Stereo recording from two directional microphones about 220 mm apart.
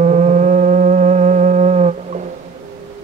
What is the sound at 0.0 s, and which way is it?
Theremin, 35° right (ahead or behind).